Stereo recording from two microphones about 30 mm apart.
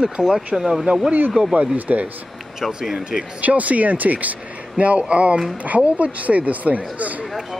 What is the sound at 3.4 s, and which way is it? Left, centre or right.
Speech, right.